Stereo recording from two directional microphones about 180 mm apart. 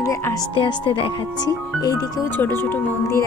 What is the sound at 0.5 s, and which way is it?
Speech, 25° left (ahead or behind).